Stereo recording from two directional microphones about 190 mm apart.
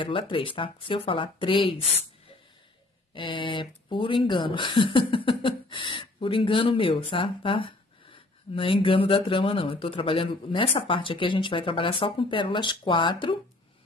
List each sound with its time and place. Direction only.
0.0 s speech: 25° left (ahead or behind)
3.2 s speech: 25° left (ahead or behind)